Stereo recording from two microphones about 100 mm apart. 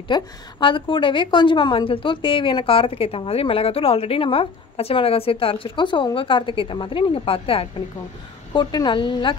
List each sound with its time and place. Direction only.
0.1 s a woman's voice: 55° left (ahead or behind)
8.5 s a woman's voice: 50° left (ahead or behind)